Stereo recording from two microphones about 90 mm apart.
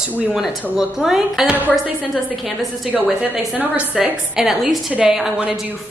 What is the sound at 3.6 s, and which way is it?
A woman's voice, 10° right (ahead or behind).